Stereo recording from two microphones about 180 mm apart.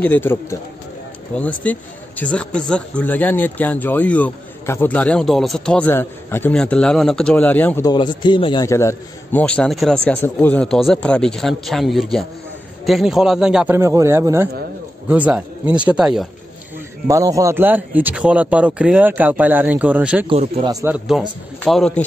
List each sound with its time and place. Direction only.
0.0 s a man's voice: 10° left (ahead or behind)
7.8 s a man's voice: 25° left (ahead or behind)
8.6 s a man's voice: 15° left (ahead or behind); by 13.7 s 5° right (ahead or behind)
13.7 s speech: 15° right (ahead or behind)
17.1 s speech: 20° right (ahead or behind)
20.2 s speech: 25° right (ahead or behind)
20.8 s a man's voice: 5° right (ahead or behind)